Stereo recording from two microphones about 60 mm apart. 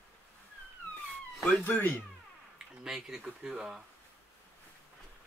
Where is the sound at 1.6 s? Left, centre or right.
Left.